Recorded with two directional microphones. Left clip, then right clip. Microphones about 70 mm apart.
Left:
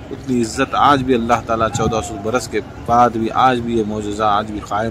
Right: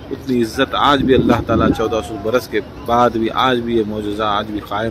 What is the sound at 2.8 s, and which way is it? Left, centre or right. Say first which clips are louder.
Speech: left 1 dB; centre.